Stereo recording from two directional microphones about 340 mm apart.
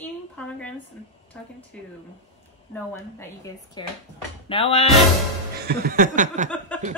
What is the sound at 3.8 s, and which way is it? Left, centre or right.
Speech, centre.